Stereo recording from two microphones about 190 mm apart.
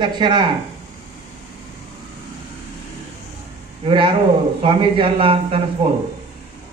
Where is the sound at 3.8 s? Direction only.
25° right (ahead or behind).